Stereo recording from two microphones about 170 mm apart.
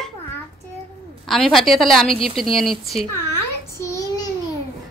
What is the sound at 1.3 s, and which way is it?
Speech, centre (ahead or behind).